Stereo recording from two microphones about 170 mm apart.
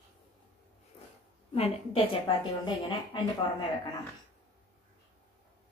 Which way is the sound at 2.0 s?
30° left (ahead or behind).